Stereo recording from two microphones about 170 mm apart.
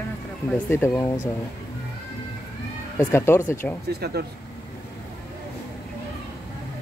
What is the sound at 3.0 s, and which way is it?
Speech, 10° left (ahead or behind).